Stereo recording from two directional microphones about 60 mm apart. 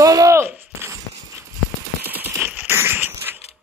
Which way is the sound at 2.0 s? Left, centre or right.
Right.